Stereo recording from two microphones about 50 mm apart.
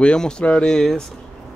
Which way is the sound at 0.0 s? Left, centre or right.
Centre.